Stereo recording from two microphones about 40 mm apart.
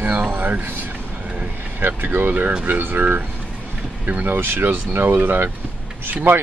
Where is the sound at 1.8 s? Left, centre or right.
Right.